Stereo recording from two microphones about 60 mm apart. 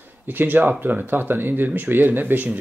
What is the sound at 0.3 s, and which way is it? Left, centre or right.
Speech, right.